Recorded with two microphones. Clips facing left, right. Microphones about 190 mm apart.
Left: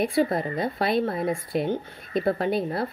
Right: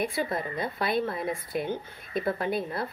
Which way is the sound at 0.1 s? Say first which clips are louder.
Left 7 dB; 25° left (ahead or behind).